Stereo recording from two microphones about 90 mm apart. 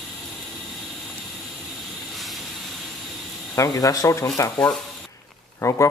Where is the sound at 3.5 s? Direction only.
40° left (ahead or behind).